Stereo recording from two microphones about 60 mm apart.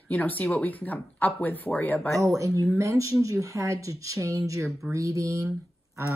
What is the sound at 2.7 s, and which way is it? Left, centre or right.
Speech, right.